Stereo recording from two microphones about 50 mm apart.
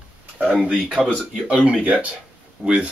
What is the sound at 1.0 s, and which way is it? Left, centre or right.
Speech, centre.